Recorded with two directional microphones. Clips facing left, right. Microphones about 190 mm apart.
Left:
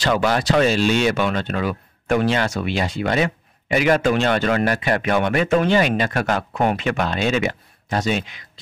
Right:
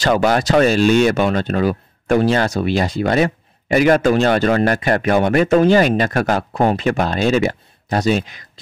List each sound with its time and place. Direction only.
0.0 s speech: 45° right (ahead or behind)